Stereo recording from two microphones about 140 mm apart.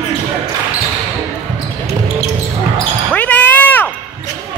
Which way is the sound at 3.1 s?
10° left (ahead or behind).